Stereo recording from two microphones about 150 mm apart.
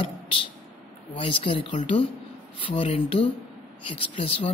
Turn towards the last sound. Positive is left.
turn(degrees=40)  # may be behind; listen again after turning